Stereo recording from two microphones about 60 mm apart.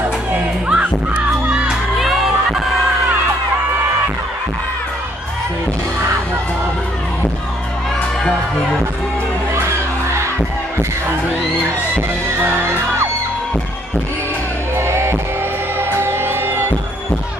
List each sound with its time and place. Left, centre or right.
0.7 s music: centre
2.0 s music: centre
14.8 s music: right